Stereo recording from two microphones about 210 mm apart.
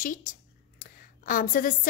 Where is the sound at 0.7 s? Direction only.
40° left (ahead or behind).